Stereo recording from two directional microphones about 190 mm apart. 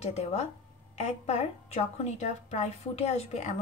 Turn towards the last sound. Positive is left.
turn(degrees=35)  # may be behind; listen again after turning